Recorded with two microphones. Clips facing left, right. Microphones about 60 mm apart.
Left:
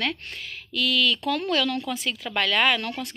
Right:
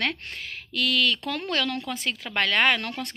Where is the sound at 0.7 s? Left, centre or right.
Right.